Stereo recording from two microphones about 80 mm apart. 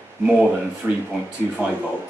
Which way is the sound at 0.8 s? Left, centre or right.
Right.